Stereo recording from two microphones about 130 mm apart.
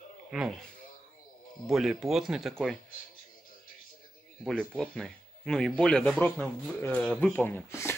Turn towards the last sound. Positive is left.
turn(degrees=20)  # may be behind; listen again after turning